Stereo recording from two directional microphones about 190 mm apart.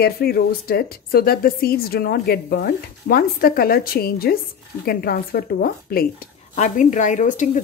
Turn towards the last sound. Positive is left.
turn(degrees=40)  # may be behind; listen again after turning